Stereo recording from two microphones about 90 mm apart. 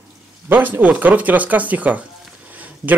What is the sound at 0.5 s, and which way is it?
Speech, 20° right (ahead or behind).